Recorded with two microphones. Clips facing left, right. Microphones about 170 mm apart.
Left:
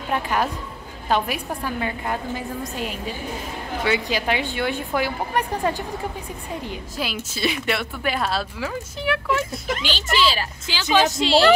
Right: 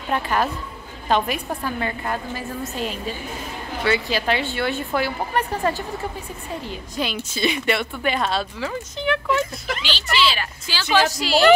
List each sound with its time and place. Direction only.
0.1 s a woman's voice: 10° left (ahead or behind)
3.8 s a woman's voice: 15° left (ahead or behind)
7.0 s speech: 5° left (ahead or behind)
9.8 s speech: 45° left (ahead or behind)
10.7 s speech: 15° left (ahead or behind)